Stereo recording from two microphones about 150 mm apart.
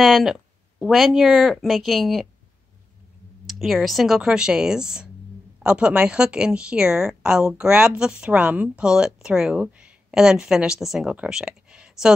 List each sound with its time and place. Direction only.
0.0 s speech: centre (ahead or behind)
3.4 s a woman's voice: centre (ahead or behind)